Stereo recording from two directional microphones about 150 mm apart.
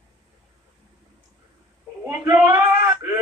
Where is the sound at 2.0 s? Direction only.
15° right (ahead or behind).